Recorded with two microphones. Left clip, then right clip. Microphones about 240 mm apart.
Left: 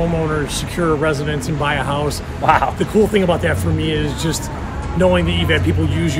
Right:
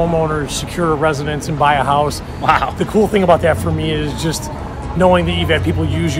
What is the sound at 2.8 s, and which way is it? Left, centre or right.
Speech, right.